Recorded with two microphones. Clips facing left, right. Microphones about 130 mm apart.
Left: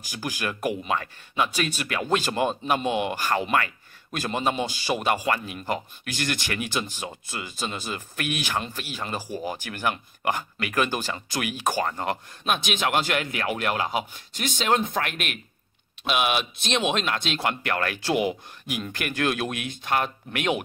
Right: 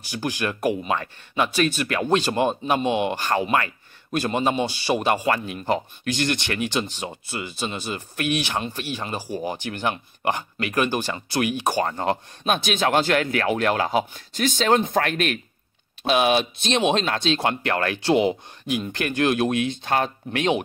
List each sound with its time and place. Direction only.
0.2 s speech: 30° right (ahead or behind)
2.0 s speech: 25° right (ahead or behind)